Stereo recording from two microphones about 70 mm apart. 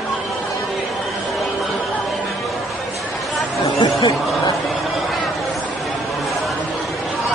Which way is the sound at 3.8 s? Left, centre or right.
Left.